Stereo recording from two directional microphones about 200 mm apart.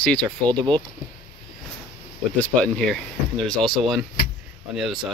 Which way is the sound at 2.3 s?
5° left (ahead or behind).